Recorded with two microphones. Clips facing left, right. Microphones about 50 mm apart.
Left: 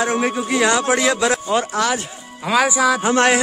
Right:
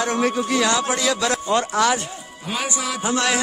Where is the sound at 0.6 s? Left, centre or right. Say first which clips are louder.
Left 7 dB; left.